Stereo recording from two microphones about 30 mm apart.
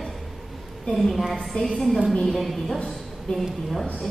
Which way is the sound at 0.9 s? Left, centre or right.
Centre.